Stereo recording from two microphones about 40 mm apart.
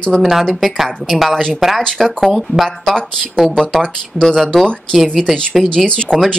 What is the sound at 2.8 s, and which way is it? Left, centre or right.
Speech, centre.